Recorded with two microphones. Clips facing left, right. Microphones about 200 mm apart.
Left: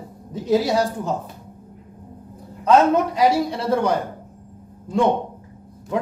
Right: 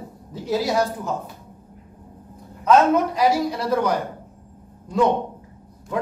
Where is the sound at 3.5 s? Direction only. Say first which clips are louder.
Left 1 dB; 25° left (ahead or behind).